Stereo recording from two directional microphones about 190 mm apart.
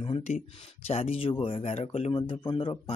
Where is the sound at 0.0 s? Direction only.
30° left (ahead or behind).